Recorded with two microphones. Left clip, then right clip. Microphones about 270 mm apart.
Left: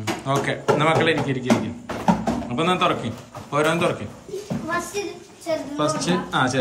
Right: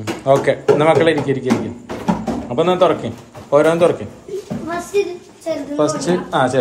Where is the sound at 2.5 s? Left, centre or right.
Centre.